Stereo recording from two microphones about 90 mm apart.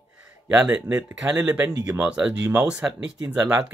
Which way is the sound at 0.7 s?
20° right (ahead or behind).